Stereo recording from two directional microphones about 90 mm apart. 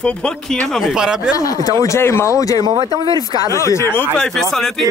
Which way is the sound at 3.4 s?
35° left (ahead or behind).